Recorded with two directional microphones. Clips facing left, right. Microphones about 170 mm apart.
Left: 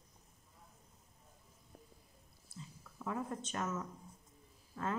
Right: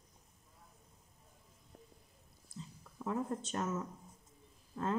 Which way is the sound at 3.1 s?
30° right (ahead or behind).